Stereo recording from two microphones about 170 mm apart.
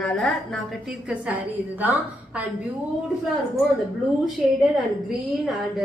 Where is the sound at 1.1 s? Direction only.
10° right (ahead or behind).